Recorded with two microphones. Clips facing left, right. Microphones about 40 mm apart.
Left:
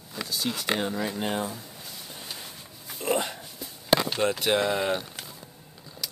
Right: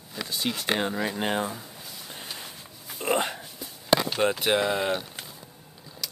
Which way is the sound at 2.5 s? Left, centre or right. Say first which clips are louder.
Even; centre.